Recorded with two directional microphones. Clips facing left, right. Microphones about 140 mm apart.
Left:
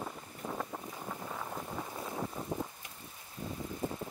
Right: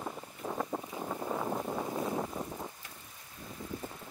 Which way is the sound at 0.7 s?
20° right (ahead or behind).